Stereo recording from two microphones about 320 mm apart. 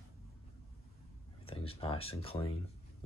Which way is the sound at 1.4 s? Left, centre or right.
Centre.